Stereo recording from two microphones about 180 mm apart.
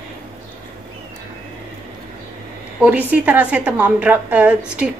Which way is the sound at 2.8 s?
10° right (ahead or behind).